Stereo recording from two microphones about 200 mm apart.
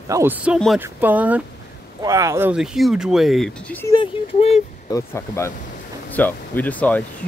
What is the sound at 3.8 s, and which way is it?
Speech, 25° left (ahead or behind).